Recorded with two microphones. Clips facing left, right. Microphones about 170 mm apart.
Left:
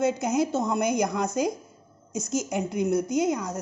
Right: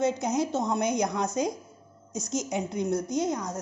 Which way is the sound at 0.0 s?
5° left (ahead or behind).